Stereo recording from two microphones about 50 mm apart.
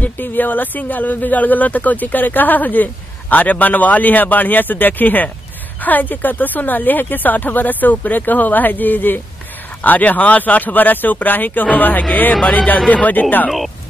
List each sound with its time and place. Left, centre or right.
0.2 s speech: left